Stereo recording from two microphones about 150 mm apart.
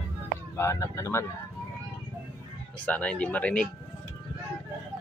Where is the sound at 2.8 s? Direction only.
10° left (ahead or behind).